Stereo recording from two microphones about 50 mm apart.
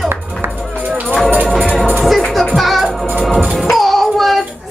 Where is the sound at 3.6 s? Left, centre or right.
Centre.